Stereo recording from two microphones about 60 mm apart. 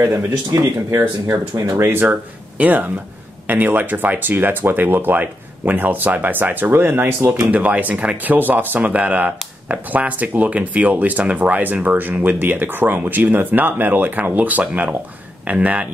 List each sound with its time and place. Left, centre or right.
0.0 s speech: right
1.8 s speech: right
2.5 s speech: right
7.2 s speech: right
7.5 s speech: right